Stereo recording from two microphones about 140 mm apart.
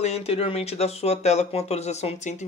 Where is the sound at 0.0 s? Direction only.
45° left (ahead or behind).